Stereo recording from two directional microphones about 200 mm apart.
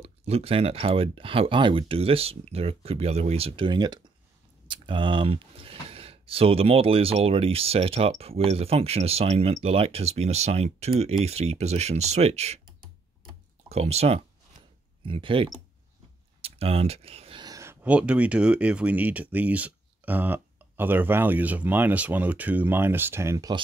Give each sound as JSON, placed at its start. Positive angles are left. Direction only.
{"t": 0.0, "sound": "speech", "side_deg": -30}
{"t": 13.7, "sound": "speech", "side_deg": -30}